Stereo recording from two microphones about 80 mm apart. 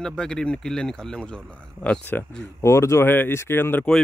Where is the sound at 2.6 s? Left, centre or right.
Left.